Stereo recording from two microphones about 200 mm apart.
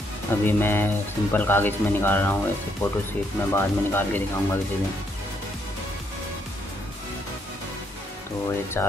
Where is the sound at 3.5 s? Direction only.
10° left (ahead or behind).